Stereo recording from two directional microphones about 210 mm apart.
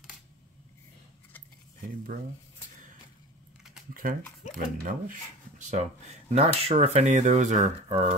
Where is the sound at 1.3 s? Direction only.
10° left (ahead or behind).